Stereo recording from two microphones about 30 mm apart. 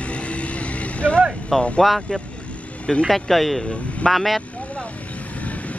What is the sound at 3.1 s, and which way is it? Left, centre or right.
Speech, centre.